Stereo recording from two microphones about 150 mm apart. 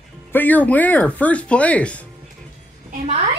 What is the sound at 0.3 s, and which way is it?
Speech, 10° left (ahead or behind).